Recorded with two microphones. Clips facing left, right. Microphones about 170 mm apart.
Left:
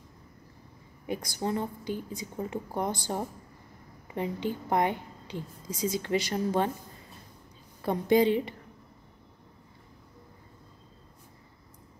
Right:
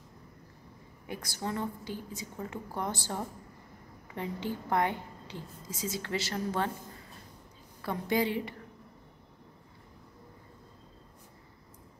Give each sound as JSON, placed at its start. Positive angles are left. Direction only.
{"t": 1.0, "sound": "a woman's voice", "side_deg": 20}
{"t": 7.8, "sound": "a woman's voice", "side_deg": 20}